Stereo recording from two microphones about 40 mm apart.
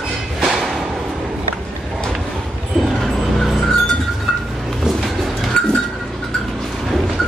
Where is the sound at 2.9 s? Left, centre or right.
Centre.